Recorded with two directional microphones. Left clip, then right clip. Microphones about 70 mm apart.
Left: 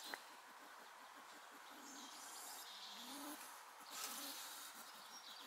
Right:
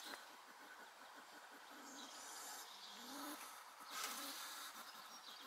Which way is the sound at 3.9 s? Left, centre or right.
Centre.